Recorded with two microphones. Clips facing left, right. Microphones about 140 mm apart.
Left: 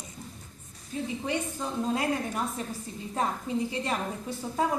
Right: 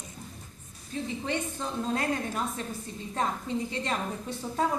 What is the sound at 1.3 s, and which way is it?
A woman's voice, 10° left (ahead or behind).